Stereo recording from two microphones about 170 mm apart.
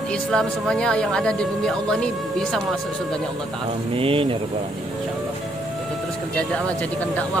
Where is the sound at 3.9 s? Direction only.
35° right (ahead or behind).